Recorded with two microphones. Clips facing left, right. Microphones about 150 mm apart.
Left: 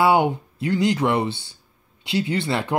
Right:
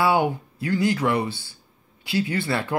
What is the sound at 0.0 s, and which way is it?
Speech, 20° left (ahead or behind).